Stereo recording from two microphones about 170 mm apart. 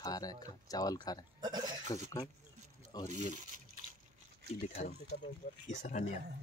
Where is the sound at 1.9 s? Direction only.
25° left (ahead or behind).